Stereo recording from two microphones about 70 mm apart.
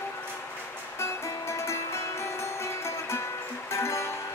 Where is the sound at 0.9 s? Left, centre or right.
Left.